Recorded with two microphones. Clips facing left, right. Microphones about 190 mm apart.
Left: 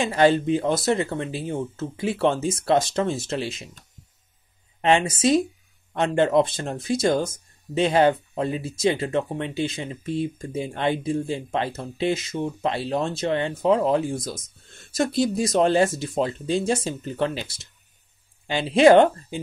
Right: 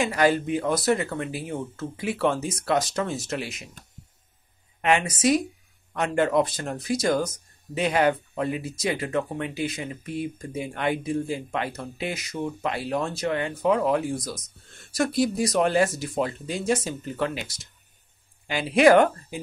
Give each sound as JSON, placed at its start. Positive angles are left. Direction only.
{"t": 0.0, "sound": "speech", "side_deg": 25}
{"t": 4.8, "sound": "speech", "side_deg": 25}